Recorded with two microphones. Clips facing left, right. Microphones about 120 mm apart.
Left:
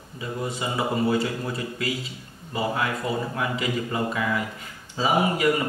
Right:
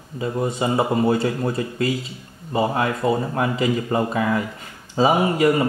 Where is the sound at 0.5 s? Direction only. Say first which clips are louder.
Right 5 dB; 45° right (ahead or behind).